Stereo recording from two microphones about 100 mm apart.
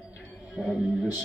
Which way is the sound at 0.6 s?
5° right (ahead or behind).